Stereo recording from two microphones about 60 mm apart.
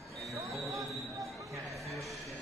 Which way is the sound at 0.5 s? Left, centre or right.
Centre.